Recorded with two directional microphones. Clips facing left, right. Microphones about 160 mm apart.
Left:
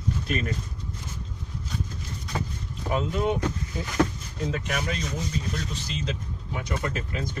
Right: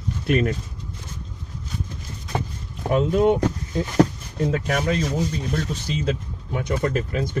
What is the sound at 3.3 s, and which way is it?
Speech, 40° right (ahead or behind).